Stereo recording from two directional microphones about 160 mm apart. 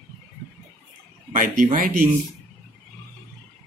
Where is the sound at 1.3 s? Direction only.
55° right (ahead or behind).